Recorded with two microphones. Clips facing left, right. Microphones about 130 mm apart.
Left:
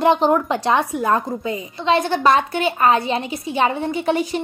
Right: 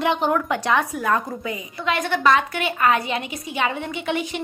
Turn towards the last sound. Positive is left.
turn(degrees=35)  # may be behind; listen again after turning